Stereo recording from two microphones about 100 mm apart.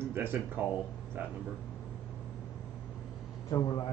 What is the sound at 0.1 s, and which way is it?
Speech, 20° right (ahead or behind).